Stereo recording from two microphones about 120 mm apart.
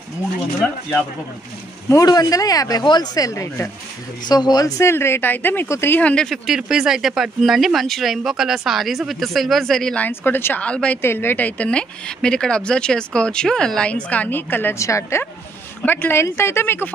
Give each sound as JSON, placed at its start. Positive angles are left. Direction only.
{"t": 0.6, "sound": "a woman's voice", "side_deg": 10}
{"t": 1.9, "sound": "speech", "side_deg": 30}
{"t": 4.3, "sound": "a woman's voice", "side_deg": 35}